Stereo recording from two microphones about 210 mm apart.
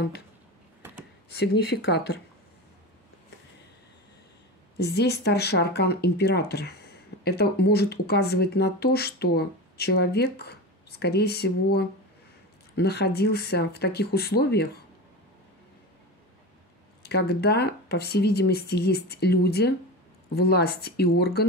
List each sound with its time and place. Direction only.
1.3 s speech: 50° left (ahead or behind)
4.7 s speech: 50° left (ahead or behind)
17.0 s speech: 50° left (ahead or behind)